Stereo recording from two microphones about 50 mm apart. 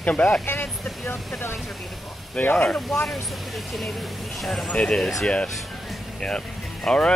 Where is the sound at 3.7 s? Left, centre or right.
Centre.